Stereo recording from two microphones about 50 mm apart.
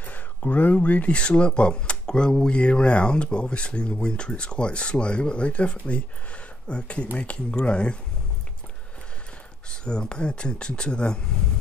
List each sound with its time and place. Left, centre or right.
0.0 s speech: left
9.7 s speech: centre